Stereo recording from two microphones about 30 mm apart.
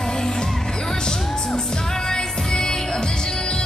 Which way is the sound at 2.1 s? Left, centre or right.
Left.